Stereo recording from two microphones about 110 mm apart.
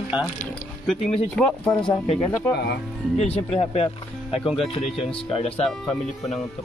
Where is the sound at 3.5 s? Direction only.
65° left (ahead or behind).